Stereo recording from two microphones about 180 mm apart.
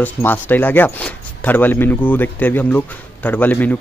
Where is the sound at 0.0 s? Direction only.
10° left (ahead or behind).